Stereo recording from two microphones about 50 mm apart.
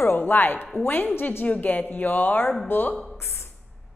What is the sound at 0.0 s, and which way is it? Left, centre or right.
Speech, left.